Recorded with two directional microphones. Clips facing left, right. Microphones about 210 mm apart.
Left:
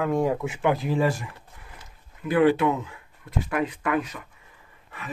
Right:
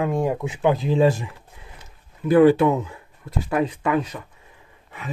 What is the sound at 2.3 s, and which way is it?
Speech, 40° right (ahead or behind).